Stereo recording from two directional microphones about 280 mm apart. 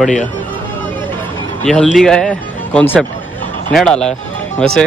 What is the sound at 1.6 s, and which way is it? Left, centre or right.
Speech, centre.